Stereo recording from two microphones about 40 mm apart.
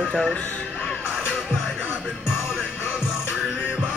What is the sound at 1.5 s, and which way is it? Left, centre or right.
Music, left.